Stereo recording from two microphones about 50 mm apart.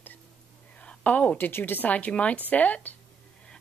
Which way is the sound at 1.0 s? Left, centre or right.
Left.